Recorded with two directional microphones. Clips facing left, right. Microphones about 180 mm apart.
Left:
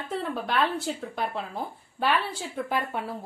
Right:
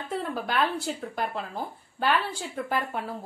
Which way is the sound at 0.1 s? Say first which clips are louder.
Left 1 dB; centre (ahead or behind).